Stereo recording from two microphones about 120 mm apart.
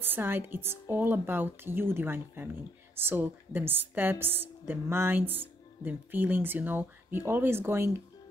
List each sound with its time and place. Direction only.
0.0 s speech: 15° right (ahead or behind)